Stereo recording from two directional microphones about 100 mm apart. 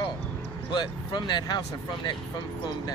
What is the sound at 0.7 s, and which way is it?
Speech, 45° left (ahead or behind).